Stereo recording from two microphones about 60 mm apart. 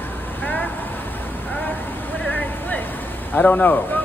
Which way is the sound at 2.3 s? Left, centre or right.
Left.